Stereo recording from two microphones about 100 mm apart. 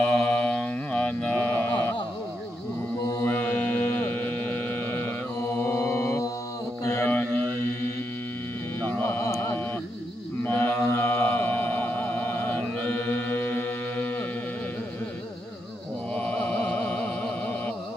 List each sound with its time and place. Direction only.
0.0 s mantra: 10° left (ahead or behind)
3.2 s mantra: 15° left (ahead or behind)
4.1 s hum: 15° left (ahead or behind)
5.6 s mantra: 25° left (ahead or behind)
7.1 s music: 20° left (ahead or behind)
8.8 s a sound: 20° left (ahead or behind)
10.4 s mantra: 15° left (ahead or behind)
16.2 s music: 15° left (ahead or behind)